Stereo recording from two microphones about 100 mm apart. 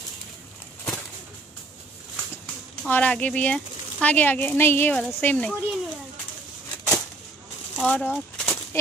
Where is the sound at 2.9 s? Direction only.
15° left (ahead or behind).